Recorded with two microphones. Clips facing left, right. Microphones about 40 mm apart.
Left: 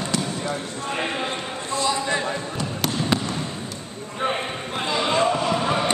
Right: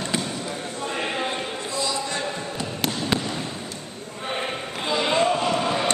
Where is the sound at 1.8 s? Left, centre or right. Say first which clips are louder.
Left 4 dB; left.